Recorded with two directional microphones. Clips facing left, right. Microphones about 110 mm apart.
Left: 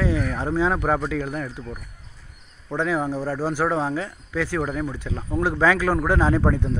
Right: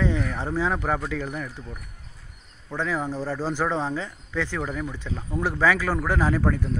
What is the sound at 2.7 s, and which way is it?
Speech, 15° left (ahead or behind).